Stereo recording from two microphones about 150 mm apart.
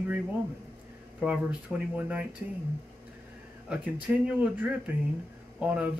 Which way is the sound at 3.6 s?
10° right (ahead or behind).